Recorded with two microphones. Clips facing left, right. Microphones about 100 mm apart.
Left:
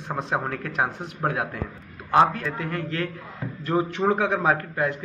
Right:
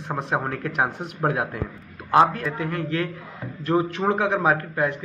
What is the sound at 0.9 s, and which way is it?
A man's voice, 20° right (ahead or behind).